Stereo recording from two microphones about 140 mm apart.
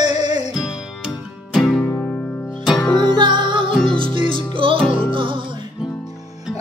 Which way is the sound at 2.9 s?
35° right (ahead or behind).